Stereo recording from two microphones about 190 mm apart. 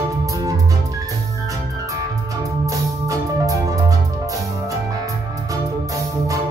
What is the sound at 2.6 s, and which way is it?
Music, 15° right (ahead or behind).